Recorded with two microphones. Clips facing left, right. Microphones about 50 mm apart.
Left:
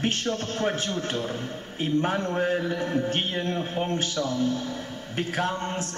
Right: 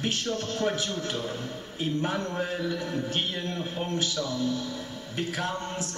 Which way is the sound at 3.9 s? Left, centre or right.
Left.